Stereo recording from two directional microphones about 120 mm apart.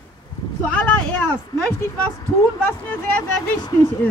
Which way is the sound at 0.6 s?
10° left (ahead or behind).